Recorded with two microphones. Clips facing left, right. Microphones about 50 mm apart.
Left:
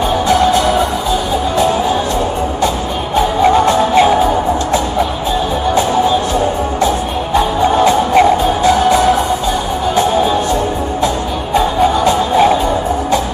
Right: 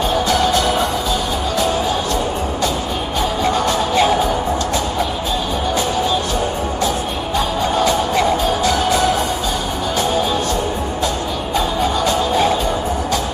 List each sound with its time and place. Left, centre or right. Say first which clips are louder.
0.3 s music: left 7 dB; centre
3.4 s music: left 8 dB; left
7.6 s music: left 6 dB; left
11.5 s music: left 7 dB; centre